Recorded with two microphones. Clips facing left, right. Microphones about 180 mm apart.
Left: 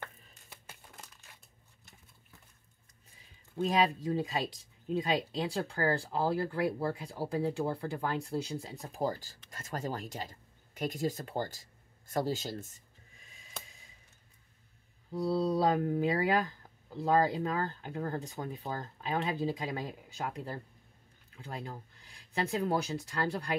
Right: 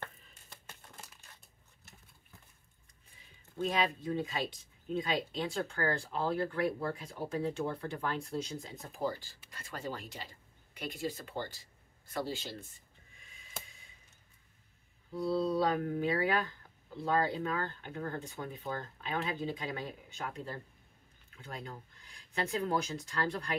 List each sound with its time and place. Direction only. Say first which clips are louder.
0.0 s music: even; 10° left (ahead or behind)
3.6 s speech: left 4 dB; 35° left (ahead or behind)
15.1 s speech: left 1 dB; 40° left (ahead or behind)